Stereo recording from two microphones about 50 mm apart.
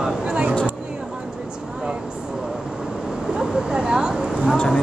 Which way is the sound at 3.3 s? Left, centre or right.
Centre.